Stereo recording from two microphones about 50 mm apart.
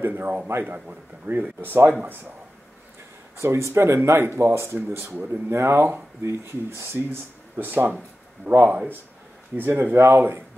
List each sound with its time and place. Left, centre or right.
0.0 s speech: right
3.3 s speech: right
4.9 s speech: right
5.3 s speech: right
6.2 s speech: right
8.5 s speech: right
9.6 s speech: right
9.9 s speech: right